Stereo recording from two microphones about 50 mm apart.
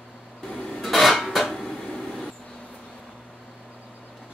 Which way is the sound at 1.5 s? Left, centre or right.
Centre.